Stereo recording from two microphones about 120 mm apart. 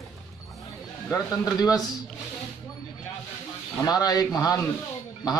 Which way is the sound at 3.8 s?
35° left (ahead or behind).